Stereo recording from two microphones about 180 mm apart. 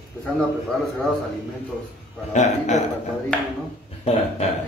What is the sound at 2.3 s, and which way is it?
Speech, 40° left (ahead or behind).